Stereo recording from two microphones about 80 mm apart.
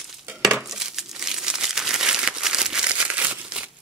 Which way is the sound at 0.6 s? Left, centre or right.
Centre.